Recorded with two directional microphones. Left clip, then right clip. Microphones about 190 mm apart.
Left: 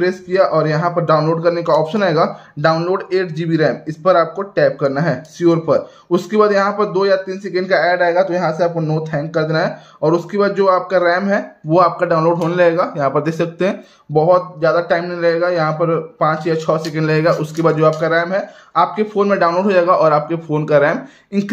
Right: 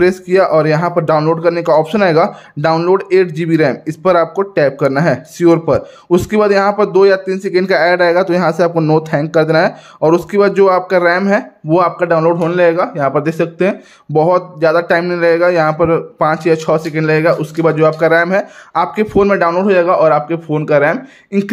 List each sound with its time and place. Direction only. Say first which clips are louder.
0.0 s speech: right 4 dB; 35° right (ahead or behind)
14.1 s speech: right 1 dB; 40° right (ahead or behind)